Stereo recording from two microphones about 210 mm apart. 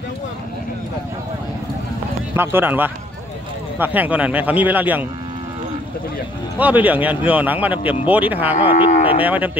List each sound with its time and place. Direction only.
2.3 s speech: 10° right (ahead or behind)
6.6 s speech: 5° right (ahead or behind)
8.6 s livestock: 25° left (ahead or behind)
9.2 s speech: 5° right (ahead or behind)